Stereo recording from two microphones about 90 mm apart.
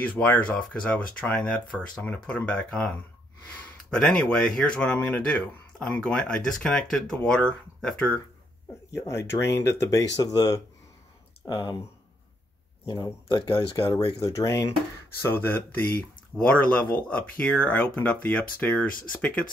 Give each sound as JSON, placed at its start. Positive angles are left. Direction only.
{"t": 0.0, "sound": "speech", "side_deg": 15}
{"t": 8.9, "sound": "speech", "side_deg": 35}
{"t": 11.4, "sound": "speech", "side_deg": 60}
{"t": 12.8, "sound": "speech", "side_deg": 55}
{"t": 14.2, "sound": "speech", "side_deg": 35}
{"t": 15.2, "sound": "speech", "side_deg": 25}